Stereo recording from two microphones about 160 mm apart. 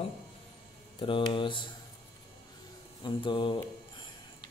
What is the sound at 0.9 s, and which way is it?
Speech, 35° left (ahead or behind).